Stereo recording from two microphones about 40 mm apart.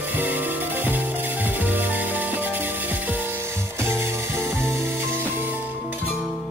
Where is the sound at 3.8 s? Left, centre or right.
Right.